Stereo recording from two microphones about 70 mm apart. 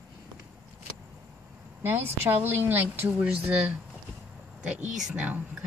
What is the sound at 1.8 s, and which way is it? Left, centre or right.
A woman's voice, right.